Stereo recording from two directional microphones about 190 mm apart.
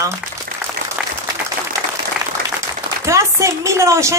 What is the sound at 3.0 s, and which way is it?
A woman's voice, 15° right (ahead or behind).